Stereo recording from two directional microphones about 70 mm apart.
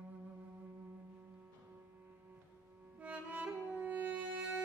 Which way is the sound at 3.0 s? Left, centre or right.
Centre.